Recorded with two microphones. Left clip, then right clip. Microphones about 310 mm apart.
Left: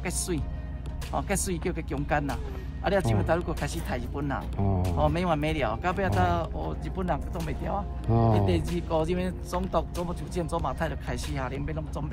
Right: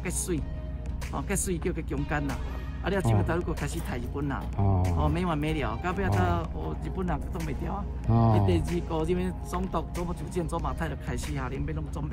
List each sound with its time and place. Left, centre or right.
0.3 s speech: centre
4.6 s speech: right
4.9 s speech: centre